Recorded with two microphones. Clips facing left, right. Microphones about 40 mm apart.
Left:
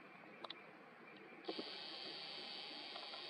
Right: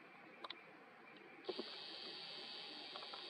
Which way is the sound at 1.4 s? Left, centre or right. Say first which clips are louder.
Even; centre.